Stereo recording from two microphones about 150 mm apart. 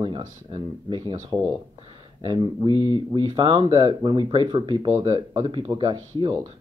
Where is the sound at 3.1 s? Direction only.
35° right (ahead or behind).